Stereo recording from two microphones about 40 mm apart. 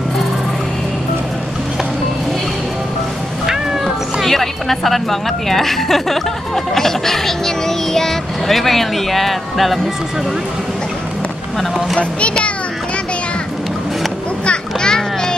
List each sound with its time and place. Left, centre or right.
3.4 s cat: centre
4.3 s a woman's voice: centre
12.0 s a child's voice: left
14.4 s a sound: left